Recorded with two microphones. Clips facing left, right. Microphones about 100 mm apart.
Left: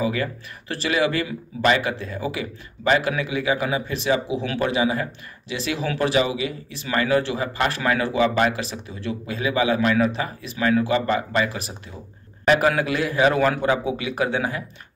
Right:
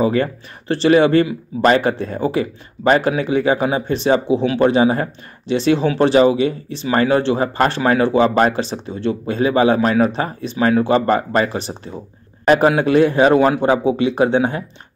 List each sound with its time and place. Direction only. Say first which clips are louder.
0.0 s a man's voice: right 7 dB; 35° right (ahead or behind)